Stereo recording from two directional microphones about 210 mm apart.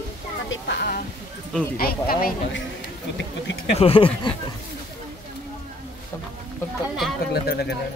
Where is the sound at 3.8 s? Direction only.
25° left (ahead or behind).